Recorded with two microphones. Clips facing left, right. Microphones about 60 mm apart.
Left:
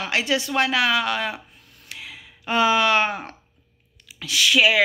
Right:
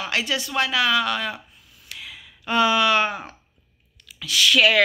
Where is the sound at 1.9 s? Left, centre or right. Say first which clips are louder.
Even; left.